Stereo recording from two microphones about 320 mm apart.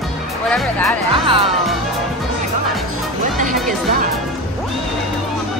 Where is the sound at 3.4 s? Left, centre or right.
Right.